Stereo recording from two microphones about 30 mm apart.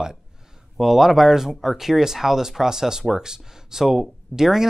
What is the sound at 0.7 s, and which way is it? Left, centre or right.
Speech, centre.